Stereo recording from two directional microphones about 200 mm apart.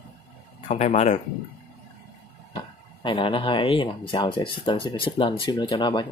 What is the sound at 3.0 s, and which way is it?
Speech, 25° left (ahead or behind).